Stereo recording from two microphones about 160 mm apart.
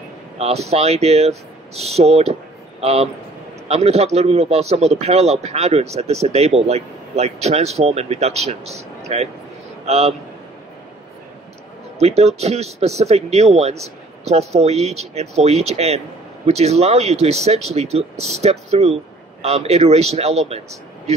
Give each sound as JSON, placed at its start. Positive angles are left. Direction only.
{"t": 0.4, "sound": "a man's voice", "side_deg": -40}
{"t": 12.0, "sound": "a man's voice", "side_deg": -40}